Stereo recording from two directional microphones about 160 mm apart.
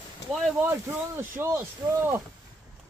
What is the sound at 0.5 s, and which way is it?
Speech, 15° right (ahead or behind).